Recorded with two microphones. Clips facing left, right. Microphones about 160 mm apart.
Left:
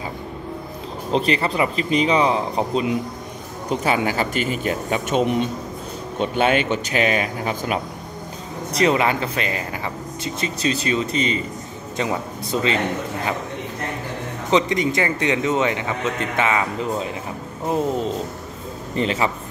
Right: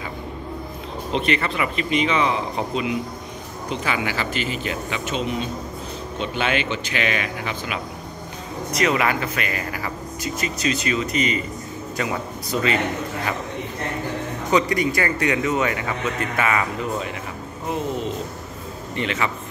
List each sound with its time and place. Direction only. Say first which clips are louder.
1.1 s speech: left 3 dB; 35° left (ahead or behind)
8.7 s speech: left 3 dB; 30° left (ahead or behind)
14.5 s speech: left 1 dB; 20° left (ahead or behind)
18.9 s speech: left 4 dB; 35° left (ahead or behind)